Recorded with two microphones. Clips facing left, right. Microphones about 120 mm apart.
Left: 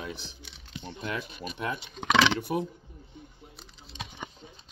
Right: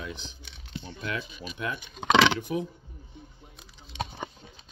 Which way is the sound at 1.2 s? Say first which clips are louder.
Left 2 dB; 50° left (ahead or behind).